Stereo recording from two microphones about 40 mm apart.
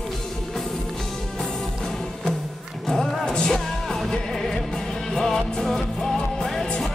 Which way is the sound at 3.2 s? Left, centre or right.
Left.